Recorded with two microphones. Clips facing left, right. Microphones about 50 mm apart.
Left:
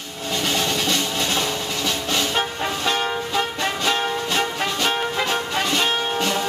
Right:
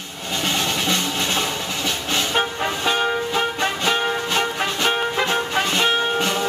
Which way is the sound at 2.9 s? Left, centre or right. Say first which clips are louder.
Right 3 dB; centre.